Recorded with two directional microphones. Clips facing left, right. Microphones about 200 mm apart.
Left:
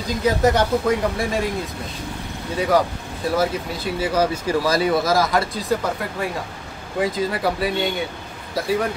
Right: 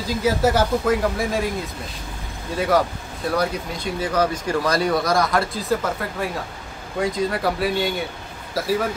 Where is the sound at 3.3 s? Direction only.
5° left (ahead or behind).